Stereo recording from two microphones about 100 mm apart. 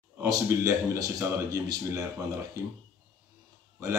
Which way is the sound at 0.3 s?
35° right (ahead or behind).